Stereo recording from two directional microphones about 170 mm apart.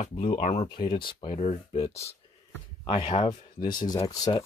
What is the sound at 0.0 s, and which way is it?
Speech, 45° left (ahead or behind).